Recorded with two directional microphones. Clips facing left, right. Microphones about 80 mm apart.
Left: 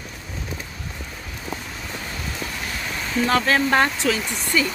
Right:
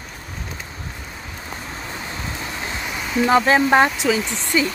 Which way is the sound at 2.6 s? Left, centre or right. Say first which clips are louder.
Right 2 dB; right.